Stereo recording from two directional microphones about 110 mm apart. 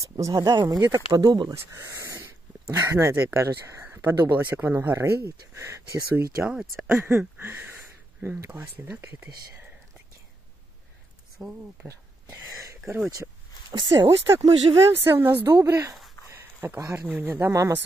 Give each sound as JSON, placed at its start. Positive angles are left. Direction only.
{"t": 0.3, "sound": "speech", "side_deg": -45}
{"t": 0.7, "sound": "speech", "side_deg": -30}
{"t": 1.1, "sound": "speech", "side_deg": -40}
{"t": 1.5, "sound": "speech", "side_deg": -25}
{"t": 6.1, "sound": "speech", "side_deg": -5}
{"t": 6.9, "sound": "speech", "side_deg": -20}
{"t": 11.3, "sound": "speech", "side_deg": -5}
{"t": 13.1, "sound": "a sound", "side_deg": -30}
{"t": 13.9, "sound": "speech", "side_deg": -25}